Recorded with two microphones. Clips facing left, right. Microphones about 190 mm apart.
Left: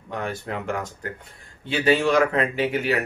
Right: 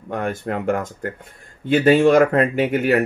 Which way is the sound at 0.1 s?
50° right (ahead or behind).